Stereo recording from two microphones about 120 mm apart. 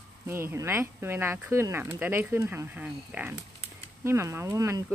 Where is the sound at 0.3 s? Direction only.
20° right (ahead or behind).